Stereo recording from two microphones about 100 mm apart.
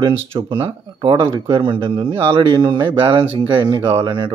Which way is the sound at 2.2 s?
70° right (ahead or behind).